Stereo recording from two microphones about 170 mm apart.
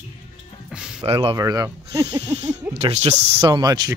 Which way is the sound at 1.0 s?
30° right (ahead or behind).